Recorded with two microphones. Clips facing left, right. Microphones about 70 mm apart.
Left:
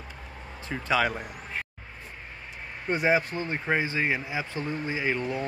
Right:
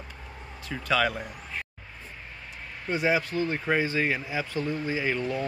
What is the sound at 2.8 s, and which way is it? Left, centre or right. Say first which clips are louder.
Speech: left 1 dB; left.